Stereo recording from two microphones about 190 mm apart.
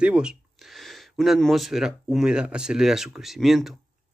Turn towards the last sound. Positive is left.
turn(degrees=0)  # may be behind; listen again after turning